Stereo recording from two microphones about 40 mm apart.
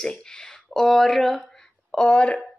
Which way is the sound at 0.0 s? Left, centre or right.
Left.